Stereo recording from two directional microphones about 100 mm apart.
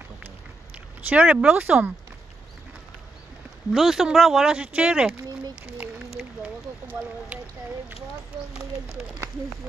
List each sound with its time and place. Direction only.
1.0 s speech: 15° right (ahead or behind)
3.7 s speech: centre (ahead or behind)
5.8 s a sound: 10° right (ahead or behind)